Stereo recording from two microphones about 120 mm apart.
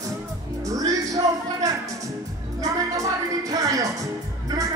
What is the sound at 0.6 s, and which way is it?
Music, 30° right (ahead or behind).